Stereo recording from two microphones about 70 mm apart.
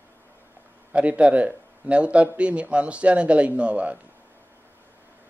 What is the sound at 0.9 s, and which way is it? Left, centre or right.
A man's voice, centre.